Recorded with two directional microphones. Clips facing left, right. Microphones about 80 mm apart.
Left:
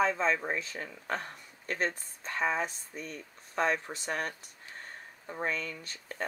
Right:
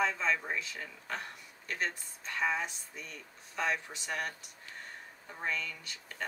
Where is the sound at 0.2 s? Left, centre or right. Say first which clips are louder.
Left 3 dB; left.